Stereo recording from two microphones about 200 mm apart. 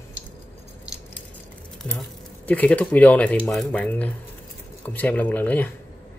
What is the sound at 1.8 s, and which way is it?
Speech, 5° left (ahead or behind).